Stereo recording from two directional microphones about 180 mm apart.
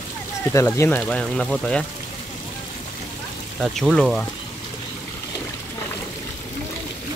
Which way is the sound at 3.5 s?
Centre (ahead or behind).